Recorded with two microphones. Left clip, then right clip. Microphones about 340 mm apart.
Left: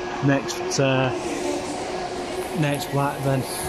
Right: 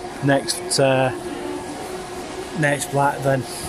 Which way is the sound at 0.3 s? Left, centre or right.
Right.